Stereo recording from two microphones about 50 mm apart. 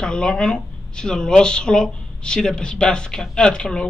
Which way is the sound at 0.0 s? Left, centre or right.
Centre.